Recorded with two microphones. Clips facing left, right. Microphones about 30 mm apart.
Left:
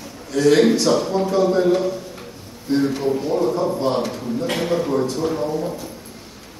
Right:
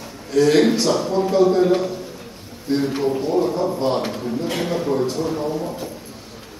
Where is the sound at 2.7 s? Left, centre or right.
Right.